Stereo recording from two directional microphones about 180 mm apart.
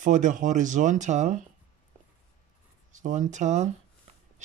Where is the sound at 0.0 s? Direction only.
45° right (ahead or behind).